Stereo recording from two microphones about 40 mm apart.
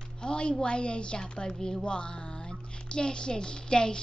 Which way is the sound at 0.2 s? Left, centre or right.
Left.